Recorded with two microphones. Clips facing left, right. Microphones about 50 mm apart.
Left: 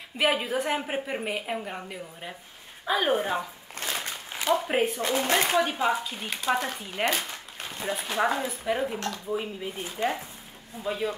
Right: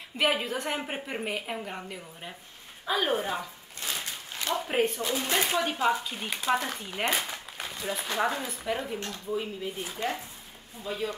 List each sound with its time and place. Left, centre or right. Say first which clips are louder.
0.2 s a woman's voice: left 2 dB; centre
5.0 s speech: left 4 dB; left
5.6 s a woman's voice: left 2 dB; centre
7.1 s a sound: right 1 dB; centre
8.0 s speech: left 3 dB; centre